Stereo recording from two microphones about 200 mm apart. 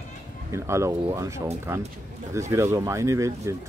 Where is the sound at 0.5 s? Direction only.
15° right (ahead or behind).